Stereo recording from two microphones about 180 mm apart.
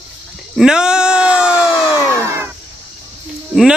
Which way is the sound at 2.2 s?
15° right (ahead or behind).